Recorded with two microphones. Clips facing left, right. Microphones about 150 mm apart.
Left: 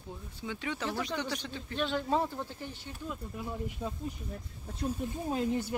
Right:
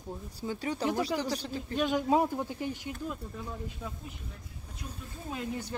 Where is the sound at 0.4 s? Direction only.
40° right (ahead or behind).